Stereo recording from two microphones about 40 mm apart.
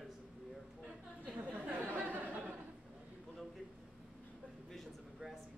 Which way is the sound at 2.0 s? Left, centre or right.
Right.